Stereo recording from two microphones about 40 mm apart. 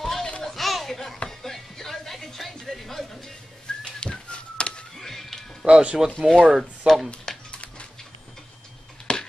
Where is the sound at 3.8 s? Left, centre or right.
Left.